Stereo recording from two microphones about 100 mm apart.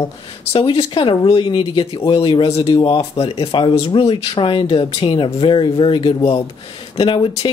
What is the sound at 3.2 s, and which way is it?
Speech, 60° left (ahead or behind).